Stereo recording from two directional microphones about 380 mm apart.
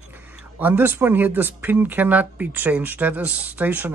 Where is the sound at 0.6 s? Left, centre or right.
Centre.